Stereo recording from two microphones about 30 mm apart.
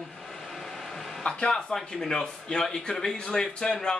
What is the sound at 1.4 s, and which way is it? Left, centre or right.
Speech, left.